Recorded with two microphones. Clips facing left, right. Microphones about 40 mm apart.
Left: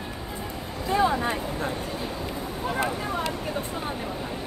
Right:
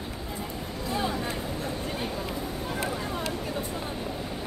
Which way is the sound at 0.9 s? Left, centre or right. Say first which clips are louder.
Left 8 dB; left.